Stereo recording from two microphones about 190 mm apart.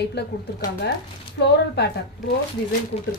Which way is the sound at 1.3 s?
60° left (ahead or behind).